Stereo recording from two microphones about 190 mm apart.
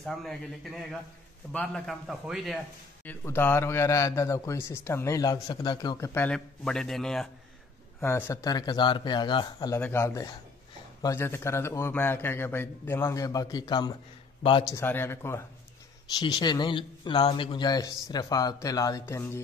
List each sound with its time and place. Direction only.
0.0 s a man's voice: centre (ahead or behind)
3.1 s a man's voice: 10° left (ahead or behind)
8.0 s speech: 15° left (ahead or behind)
9.8 s a man's voice: 10° left (ahead or behind)